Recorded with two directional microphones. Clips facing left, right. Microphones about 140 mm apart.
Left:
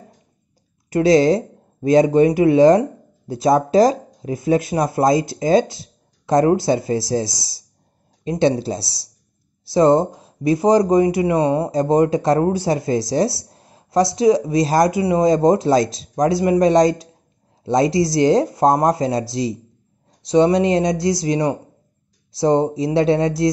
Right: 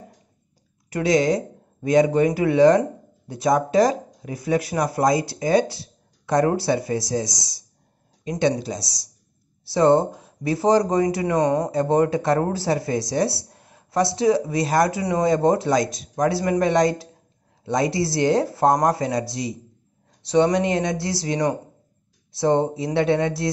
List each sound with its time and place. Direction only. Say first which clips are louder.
0.8 s speech: left 6 dB; 25° left (ahead or behind)
11.4 s speech: left 3 dB; 10° left (ahead or behind); by 13.0 s 25° left (ahead or behind)
13.5 s a sound: left 5 dB; 25° left (ahead or behind)
14.1 s speech: left 5 dB; 20° left (ahead or behind)